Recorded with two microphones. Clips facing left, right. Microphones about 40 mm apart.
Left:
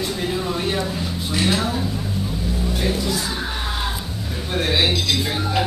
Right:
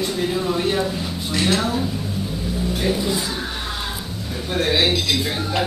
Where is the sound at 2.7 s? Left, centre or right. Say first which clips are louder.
Right 2 dB; centre.